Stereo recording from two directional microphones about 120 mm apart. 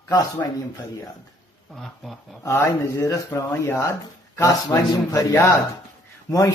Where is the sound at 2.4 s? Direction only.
25° left (ahead or behind).